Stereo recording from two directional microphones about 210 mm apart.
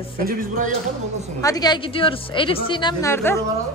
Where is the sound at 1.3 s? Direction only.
15° left (ahead or behind).